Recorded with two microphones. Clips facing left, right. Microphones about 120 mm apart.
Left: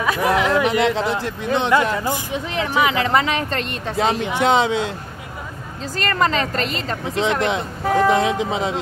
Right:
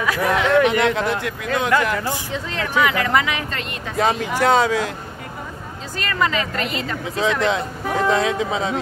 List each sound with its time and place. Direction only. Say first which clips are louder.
0.0 s speech: left 1 dB; 20° left (ahead or behind)
0.3 s speech: right 2 dB; 35° left (ahead or behind)
6.0 s speech: left 2 dB; 40° left (ahead or behind)